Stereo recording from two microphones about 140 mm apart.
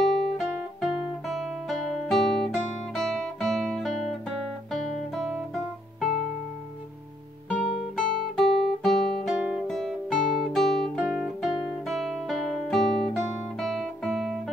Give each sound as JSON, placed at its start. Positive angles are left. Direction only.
{"t": 0.0, "sound": "music", "side_deg": 5}
{"t": 1.3, "sound": "guitar", "side_deg": 0}
{"t": 7.6, "sound": "guitar", "side_deg": 5}